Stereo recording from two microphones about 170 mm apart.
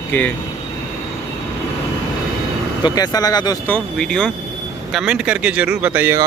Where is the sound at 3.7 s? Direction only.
5° left (ahead or behind).